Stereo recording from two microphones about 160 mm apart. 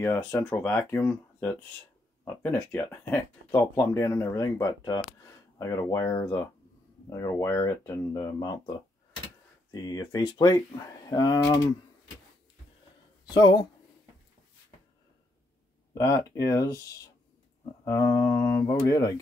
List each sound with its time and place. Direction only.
0.0 s speech: 15° left (ahead or behind)
13.3 s speech: 25° left (ahead or behind)
15.9 s speech: 20° left (ahead or behind)